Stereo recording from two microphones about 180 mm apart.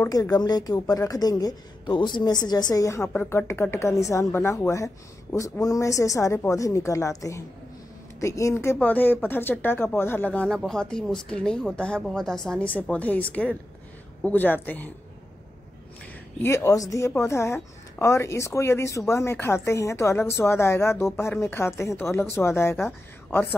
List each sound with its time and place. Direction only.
0.0 s a woman's voice: 20° left (ahead or behind)
16.4 s a woman's voice: 15° left (ahead or behind)